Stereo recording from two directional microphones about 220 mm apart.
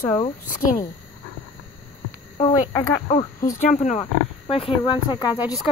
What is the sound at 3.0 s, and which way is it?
Speech, 30° left (ahead or behind).